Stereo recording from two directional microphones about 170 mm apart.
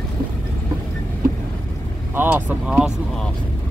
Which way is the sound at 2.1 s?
10° right (ahead or behind).